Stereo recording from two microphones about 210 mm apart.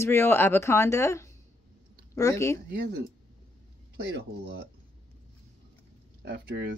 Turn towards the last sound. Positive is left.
turn(degrees=-50)  # may be behind; listen again after turning